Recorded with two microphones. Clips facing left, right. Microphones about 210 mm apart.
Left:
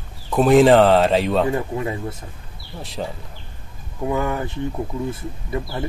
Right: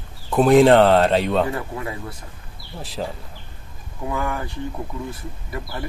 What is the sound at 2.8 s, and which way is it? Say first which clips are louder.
Speech: even; centre (ahead or behind).